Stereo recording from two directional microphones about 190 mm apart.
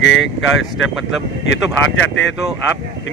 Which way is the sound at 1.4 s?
70° left (ahead or behind).